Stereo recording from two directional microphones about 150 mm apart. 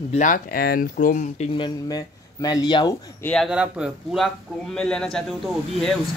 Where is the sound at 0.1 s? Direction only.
60° left (ahead or behind).